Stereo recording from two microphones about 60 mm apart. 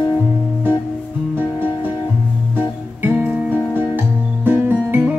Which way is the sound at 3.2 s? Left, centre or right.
Centre.